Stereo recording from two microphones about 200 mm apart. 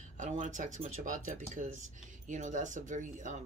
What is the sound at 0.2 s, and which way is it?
Speech, 40° right (ahead or behind).